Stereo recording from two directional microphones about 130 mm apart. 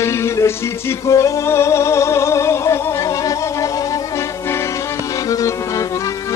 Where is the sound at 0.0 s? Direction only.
20° left (ahead or behind).